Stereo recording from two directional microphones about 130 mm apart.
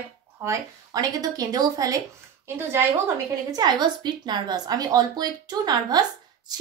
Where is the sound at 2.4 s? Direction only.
20° right (ahead or behind).